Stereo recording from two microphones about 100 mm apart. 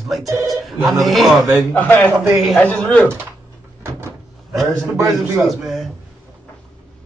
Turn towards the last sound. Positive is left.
turn(degrees=0)  # may be behind; listen again after turning